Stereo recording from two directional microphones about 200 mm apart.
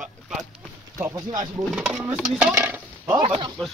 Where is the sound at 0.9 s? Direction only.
15° right (ahead or behind).